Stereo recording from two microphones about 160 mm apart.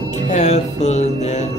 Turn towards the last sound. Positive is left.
turn(degrees=45)  # may be behind; listen again after turning